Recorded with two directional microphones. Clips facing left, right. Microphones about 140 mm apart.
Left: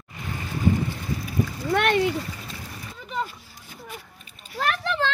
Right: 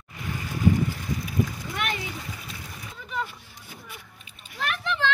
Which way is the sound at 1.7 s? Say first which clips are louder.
Left 11 dB; 60° left (ahead or behind).